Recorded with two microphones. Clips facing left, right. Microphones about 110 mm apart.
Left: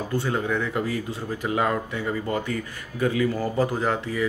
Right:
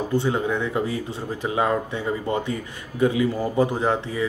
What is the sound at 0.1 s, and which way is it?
Speech, 20° right (ahead or behind).